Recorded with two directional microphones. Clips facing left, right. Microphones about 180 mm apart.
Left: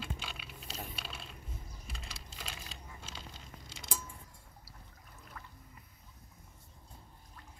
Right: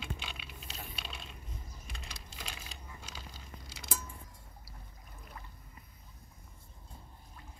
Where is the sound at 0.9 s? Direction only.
Centre (ahead or behind).